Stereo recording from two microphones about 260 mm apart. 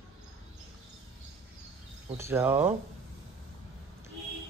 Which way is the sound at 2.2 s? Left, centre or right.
Centre.